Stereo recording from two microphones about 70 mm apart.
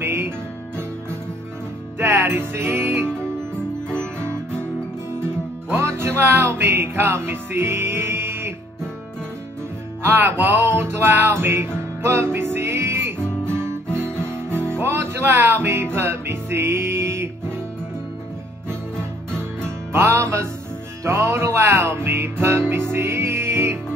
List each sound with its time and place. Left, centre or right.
0.0 s music: right
2.0 s music: right
5.1 s music: right
10.0 s music: right
13.5 s guitar: right
14.8 s music: right
18.9 s music: centre
19.9 s music: right